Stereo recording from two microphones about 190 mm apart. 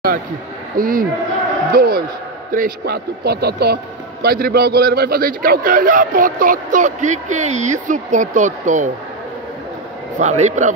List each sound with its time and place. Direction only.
0.7 s a man's voice: 50° right (ahead or behind)
10.1 s a man's voice: 40° right (ahead or behind)